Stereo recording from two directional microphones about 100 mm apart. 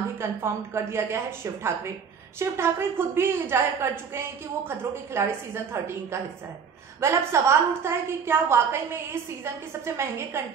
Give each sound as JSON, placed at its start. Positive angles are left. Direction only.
{"t": 0.2, "sound": "a woman's voice", "side_deg": -25}